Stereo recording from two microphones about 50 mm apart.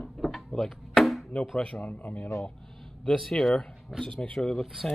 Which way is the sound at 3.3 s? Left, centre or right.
Centre.